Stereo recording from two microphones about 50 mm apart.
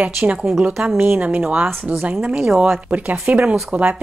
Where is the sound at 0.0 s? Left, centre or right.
Right.